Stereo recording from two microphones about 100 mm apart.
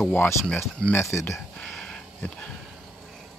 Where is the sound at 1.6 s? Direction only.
5° left (ahead or behind).